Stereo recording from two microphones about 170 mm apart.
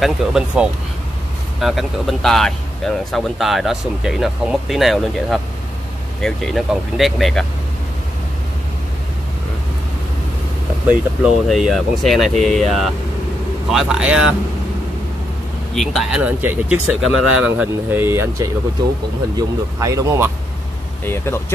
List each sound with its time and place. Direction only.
0.0 s speech: 5° right (ahead or behind)
10.9 s speech: 5° right (ahead or behind)
15.7 s speech: centre (ahead or behind); by 20.2 s 20° right (ahead or behind)
21.0 s speech: 15° left (ahead or behind)